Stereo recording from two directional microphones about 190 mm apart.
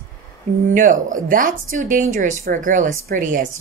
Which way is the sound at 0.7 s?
45° right (ahead or behind).